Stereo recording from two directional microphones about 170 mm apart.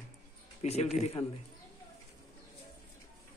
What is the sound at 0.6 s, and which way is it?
Speech, 40° left (ahead or behind).